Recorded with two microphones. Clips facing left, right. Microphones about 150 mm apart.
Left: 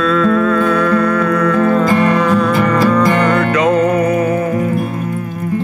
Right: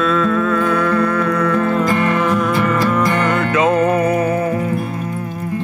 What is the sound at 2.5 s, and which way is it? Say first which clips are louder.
Music: left 3 dB; 90° left.